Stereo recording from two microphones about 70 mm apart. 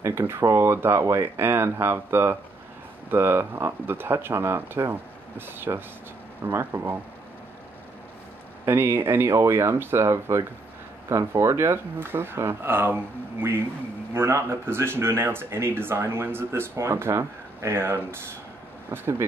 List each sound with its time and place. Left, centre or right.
0.0 s speech: right
8.6 s speech: right